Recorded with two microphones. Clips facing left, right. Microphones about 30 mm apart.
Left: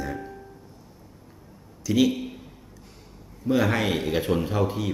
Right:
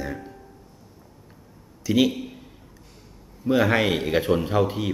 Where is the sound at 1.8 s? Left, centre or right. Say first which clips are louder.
Right 1 dB; centre.